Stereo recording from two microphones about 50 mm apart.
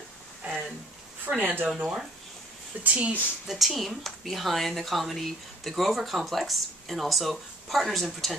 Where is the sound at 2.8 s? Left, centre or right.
Right.